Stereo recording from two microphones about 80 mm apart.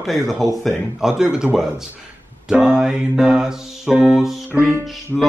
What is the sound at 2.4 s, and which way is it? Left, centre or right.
Music, centre.